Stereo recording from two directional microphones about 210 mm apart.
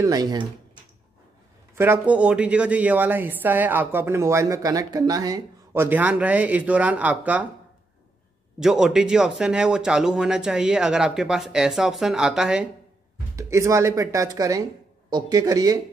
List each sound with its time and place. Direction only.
0.0 s speech: 20° right (ahead or behind)
1.8 s speech: 10° right (ahead or behind)
8.5 s a man's voice: centre (ahead or behind)
13.4 s speech: 15° right (ahead or behind)